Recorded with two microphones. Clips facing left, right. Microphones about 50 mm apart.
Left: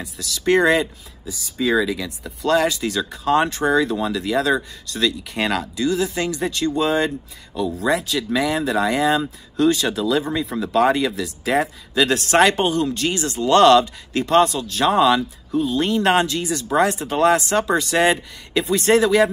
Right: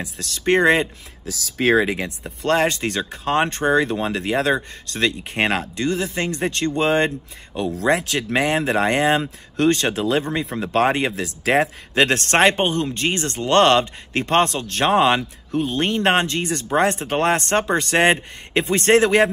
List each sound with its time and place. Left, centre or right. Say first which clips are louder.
0.0 s speech: even; right
1.2 s speech: right 1 dB; right
1.7 s speech: right 2 dB; right
11.2 s speech: right 2 dB; right
12.4 s speech: left 1 dB; right